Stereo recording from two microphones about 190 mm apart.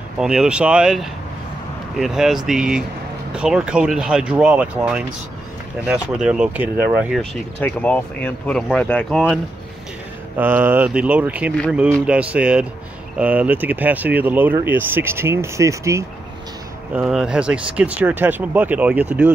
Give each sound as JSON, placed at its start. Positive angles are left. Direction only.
{"t": 0.2, "sound": "speech", "side_deg": -5}
{"t": 7.2, "sound": "speech", "side_deg": 5}
{"t": 10.3, "sound": "speech", "side_deg": -10}
{"t": 16.9, "sound": "speech", "side_deg": -5}